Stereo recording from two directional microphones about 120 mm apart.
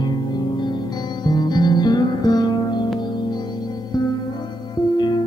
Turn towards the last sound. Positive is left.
turn(degrees=35)  # may be behind; listen again after turning